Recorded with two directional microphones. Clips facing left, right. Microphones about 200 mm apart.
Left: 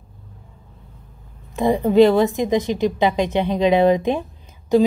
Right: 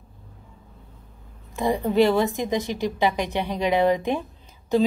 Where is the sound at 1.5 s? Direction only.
20° left (ahead or behind).